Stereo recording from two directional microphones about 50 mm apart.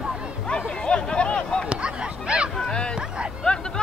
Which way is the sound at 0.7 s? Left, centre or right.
Centre.